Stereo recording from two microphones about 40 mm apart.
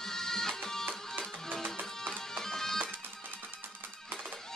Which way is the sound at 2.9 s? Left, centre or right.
Right.